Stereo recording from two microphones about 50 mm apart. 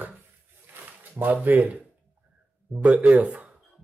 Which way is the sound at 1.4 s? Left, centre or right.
Right.